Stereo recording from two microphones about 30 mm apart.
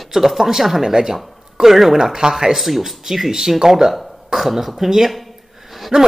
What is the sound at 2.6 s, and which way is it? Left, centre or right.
A woman's voice, centre.